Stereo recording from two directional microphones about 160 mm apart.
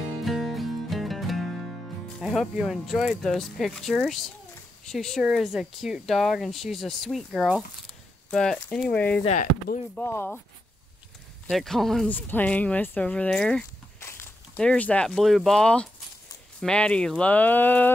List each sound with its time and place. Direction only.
0.2 s music: centre (ahead or behind)
2.2 s speech: centre (ahead or behind)
9.2 s speech: 50° left (ahead or behind)
9.9 s speech: 10° left (ahead or behind)
11.4 s speech: centre (ahead or behind)
13.9 s walk: 15° left (ahead or behind)
14.6 s speech: 5° left (ahead or behind)